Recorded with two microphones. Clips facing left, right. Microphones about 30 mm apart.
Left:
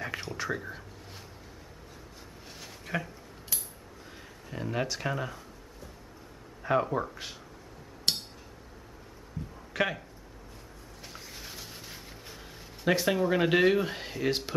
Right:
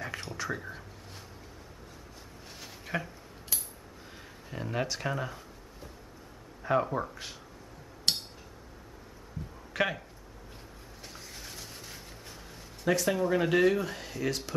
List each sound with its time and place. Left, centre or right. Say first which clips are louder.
0.0 s a sound: left 2 dB; centre
2.6 s scissors: left 1 dB; centre
4.5 s speech: left 1 dB; centre
6.6 s speech: left 1 dB; centre
8.1 s tick: even; centre
9.8 s speech: even; centre
11.0 s vehicle: left 1 dB; centre
12.8 s speech: left 1 dB; left